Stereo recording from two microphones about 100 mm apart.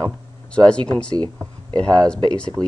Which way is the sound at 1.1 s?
45° right (ahead or behind).